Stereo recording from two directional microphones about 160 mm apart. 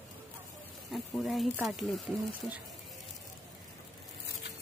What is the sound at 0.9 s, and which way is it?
Speech, centre (ahead or behind).